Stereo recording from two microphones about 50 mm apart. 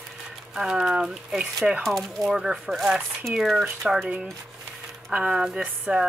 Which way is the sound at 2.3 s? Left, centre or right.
Centre.